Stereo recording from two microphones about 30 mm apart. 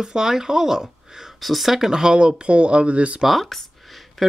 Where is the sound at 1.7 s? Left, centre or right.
Centre; by 3.2 s right.